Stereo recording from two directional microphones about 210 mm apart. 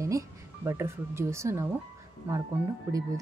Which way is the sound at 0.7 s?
10° right (ahead or behind).